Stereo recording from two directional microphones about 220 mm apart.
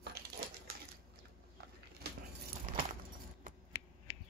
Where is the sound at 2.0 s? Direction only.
45° right (ahead or behind).